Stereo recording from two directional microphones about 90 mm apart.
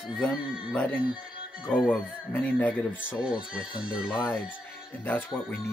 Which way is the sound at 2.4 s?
15° left (ahead or behind).